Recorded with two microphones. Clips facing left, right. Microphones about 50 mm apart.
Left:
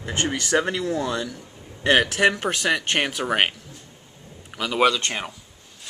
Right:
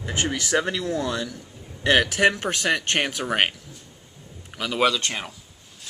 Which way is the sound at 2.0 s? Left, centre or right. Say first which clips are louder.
Even; centre.